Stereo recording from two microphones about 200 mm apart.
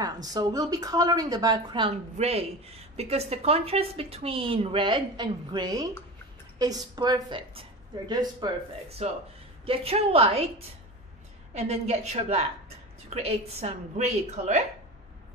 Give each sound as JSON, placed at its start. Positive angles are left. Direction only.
{"t": 0.0, "sound": "speech", "side_deg": -20}
{"t": 9.0, "sound": "a woman's voice", "side_deg": -30}
{"t": 11.5, "sound": "a woman's voice", "side_deg": -35}